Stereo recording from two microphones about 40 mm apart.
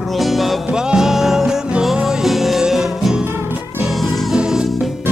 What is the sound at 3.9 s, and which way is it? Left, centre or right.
Music, centre.